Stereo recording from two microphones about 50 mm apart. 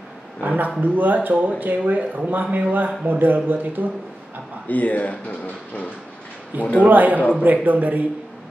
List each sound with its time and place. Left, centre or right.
0.4 s speech: right
4.6 s speech: left
6.8 s speech: right